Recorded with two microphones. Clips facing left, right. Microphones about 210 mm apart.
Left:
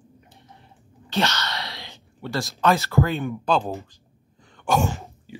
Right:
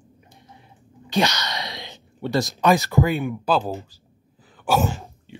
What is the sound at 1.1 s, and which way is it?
Speech, 15° right (ahead or behind).